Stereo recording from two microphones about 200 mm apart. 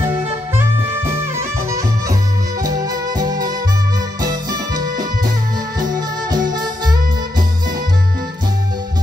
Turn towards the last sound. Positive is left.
turn(degrees=-20)  # may be behind; listen again after turning